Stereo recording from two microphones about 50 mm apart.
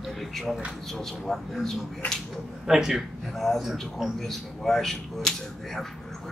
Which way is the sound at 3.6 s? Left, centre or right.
Centre.